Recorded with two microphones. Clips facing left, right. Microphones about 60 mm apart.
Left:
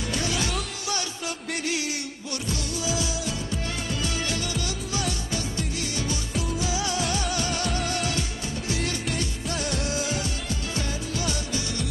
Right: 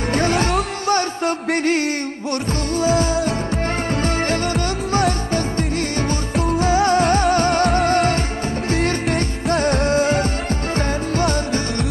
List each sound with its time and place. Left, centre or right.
0.1 s music: right